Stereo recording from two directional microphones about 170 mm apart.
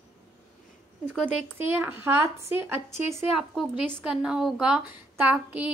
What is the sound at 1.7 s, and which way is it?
A child's voice, 15° right (ahead or behind).